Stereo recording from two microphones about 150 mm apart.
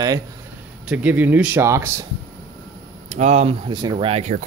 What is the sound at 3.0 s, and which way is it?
Speech, 50° right (ahead or behind).